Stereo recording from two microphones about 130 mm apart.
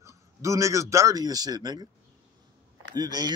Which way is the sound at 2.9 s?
30° right (ahead or behind).